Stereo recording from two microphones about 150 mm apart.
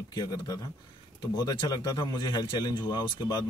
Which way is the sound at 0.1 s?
30° left (ahead or behind).